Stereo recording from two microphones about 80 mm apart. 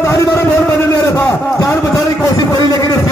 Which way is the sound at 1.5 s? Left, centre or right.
Left.